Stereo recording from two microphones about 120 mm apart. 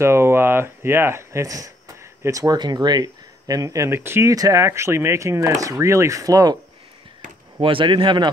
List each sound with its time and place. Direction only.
0.0 s speech: 20° right (ahead or behind)
7.6 s speech: 45° right (ahead or behind)